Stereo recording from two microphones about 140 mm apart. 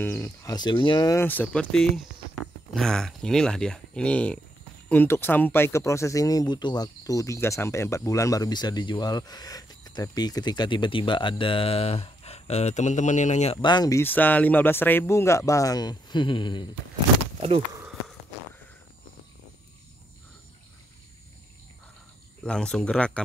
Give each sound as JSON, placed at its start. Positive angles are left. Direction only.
{"t": 0.0, "sound": "speech", "side_deg": 20}
{"t": 1.2, "sound": "speech", "side_deg": 10}
{"t": 13.6, "sound": "speech", "side_deg": 30}
{"t": 22.4, "sound": "speech", "side_deg": 5}